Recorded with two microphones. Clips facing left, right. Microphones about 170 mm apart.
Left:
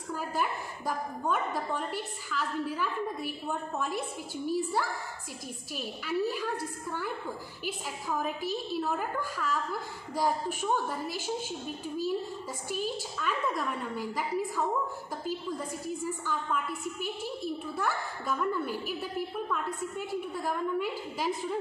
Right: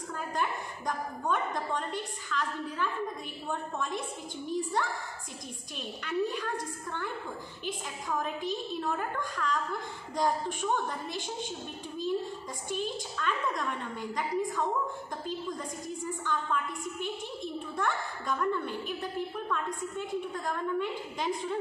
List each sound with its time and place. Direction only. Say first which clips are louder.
0.1 s a woman's voice: left 2 dB; 5° left (ahead or behind)
12.6 s a woman's voice: even; 5° left (ahead or behind)